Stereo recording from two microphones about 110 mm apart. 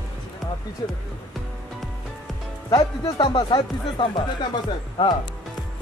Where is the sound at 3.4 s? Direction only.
40° left (ahead or behind).